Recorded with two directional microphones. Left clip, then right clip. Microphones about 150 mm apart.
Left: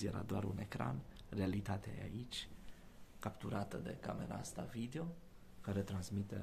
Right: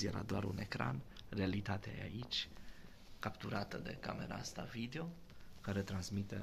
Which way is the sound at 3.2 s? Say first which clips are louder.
Right 2 dB; 20° left (ahead or behind).